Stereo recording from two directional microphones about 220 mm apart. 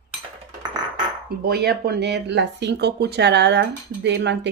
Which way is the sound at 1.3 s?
45° right (ahead or behind).